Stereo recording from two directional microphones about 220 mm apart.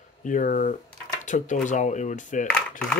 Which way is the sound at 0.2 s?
35° left (ahead or behind).